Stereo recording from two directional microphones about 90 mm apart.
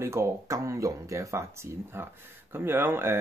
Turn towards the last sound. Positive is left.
turn(degrees=-25)  # may be behind; listen again after turning